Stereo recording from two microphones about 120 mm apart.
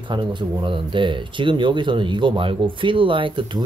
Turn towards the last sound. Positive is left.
turn(degrees=-45)  # may be behind; listen again after turning